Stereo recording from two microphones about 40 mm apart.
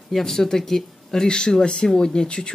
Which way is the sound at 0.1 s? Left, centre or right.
Centre.